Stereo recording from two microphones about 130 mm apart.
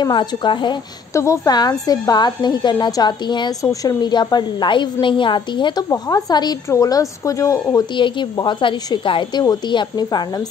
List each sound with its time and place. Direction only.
0.0 s a woman's voice: 35° left (ahead or behind)
1.1 s a woman's voice: 25° left (ahead or behind)
7.9 s a woman's voice: 40° left (ahead or behind)